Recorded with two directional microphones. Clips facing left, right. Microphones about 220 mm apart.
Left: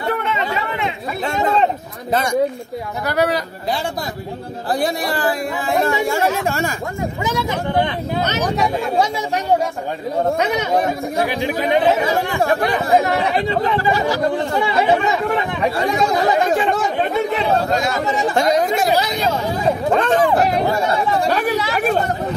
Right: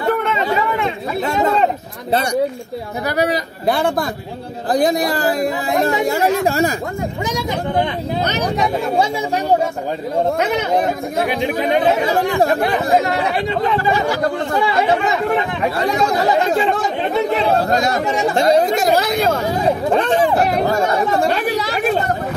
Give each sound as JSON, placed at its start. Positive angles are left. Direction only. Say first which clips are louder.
{"t": 3.1, "sound": "speech", "louder": "even", "side_deg": -15}
{"t": 3.6, "sound": "a man's voice", "louder": "right 10 dB", "side_deg": -55}
{"t": 4.7, "sound": "speech", "louder": "right 5 dB", "side_deg": -40}
{"t": 18.3, "sound": "speech", "louder": "right 3 dB", "side_deg": -30}
{"t": 18.9, "sound": "speech", "louder": "right 3 dB", "side_deg": -50}
{"t": 20.0, "sound": "speech", "louder": "even", "side_deg": -10}
{"t": 20.7, "sound": "speech", "louder": "right 2 dB", "side_deg": -45}